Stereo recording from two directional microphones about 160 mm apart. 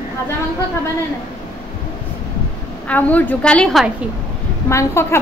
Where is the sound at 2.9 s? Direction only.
10° left (ahead or behind).